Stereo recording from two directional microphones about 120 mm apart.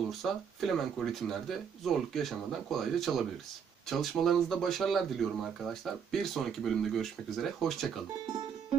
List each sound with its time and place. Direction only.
0.2 s speech: centre (ahead or behind)